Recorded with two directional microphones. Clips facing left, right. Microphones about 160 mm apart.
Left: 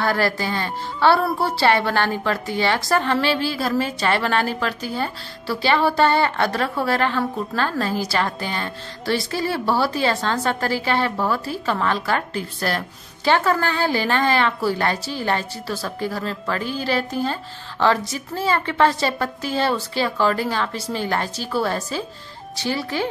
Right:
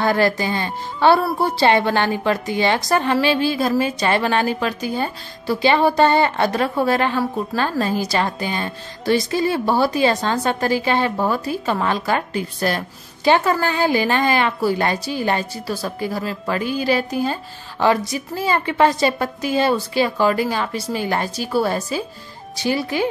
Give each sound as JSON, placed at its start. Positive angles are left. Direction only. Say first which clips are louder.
{"t": 0.0, "sound": "a woman's voice", "louder": "right 3 dB", "side_deg": -20}